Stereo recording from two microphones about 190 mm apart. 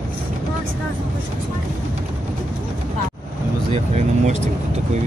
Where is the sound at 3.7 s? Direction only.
35° right (ahead or behind).